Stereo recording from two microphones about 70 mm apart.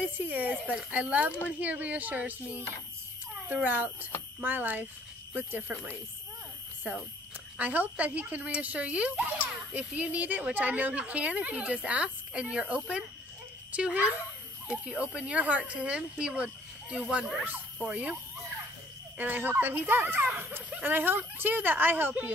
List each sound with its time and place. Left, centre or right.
0.3 s speech: right
3.6 s speech: right
7.5 s speech: right
19.1 s speech: right